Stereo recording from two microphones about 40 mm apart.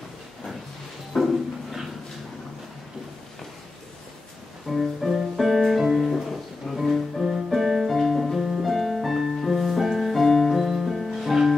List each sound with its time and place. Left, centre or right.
1.1 s a sound: centre
4.6 s music: centre
7.2 s music: centre
7.5 s music: centre
8.7 s music: centre